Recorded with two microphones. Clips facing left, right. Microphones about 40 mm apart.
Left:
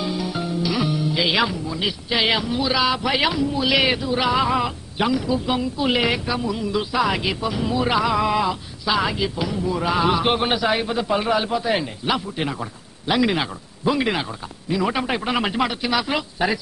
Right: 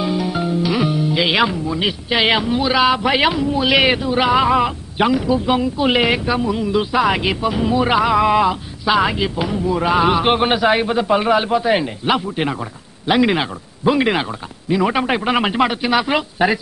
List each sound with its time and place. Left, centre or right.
0.0 s speech: right